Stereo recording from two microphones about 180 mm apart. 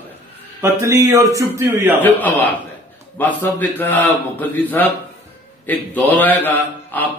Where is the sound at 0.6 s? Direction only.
15° right (ahead or behind).